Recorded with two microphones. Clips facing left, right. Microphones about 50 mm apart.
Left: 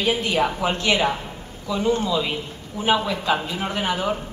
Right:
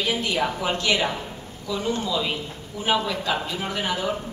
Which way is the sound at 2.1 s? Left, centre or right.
Centre.